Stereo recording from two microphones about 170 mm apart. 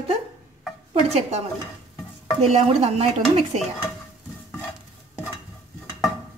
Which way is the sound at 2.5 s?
35° right (ahead or behind).